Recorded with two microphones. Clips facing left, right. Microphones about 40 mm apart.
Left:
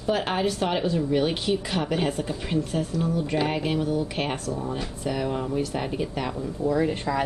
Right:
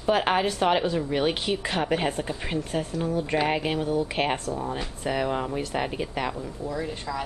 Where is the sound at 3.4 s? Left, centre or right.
Centre.